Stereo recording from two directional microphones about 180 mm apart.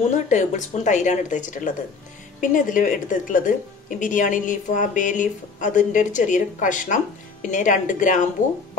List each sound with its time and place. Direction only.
0.1 s speech: 40° left (ahead or behind)